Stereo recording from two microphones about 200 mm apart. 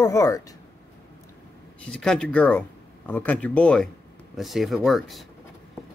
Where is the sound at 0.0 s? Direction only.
15° left (ahead or behind).